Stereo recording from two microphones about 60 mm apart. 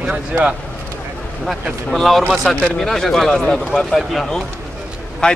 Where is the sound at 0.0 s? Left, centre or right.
Right.